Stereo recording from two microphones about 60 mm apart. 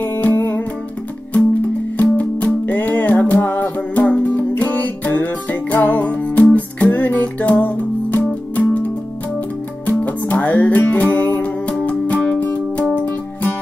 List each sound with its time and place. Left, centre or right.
0.0 s music: left
2.0 s music: left
9.8 s music: left